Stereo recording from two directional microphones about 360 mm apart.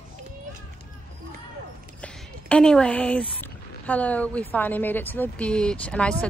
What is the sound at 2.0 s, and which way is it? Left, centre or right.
Speech, centre.